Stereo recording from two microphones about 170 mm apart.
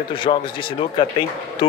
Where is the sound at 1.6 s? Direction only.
30° left (ahead or behind).